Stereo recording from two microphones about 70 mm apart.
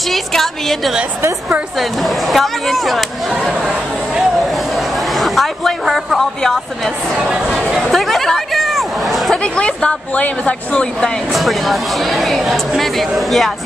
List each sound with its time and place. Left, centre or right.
0.1 s speech: centre
5.1 s a woman's voice: centre
7.2 s speech: centre
7.7 s chatter: centre
9.4 s speech: centre
11.3 s speech: centre